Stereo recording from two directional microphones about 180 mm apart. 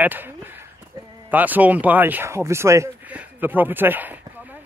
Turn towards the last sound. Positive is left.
turn(degrees=-10)  # may be behind; listen again after turning